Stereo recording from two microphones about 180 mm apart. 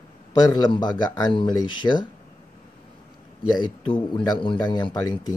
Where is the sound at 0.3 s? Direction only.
20° left (ahead or behind).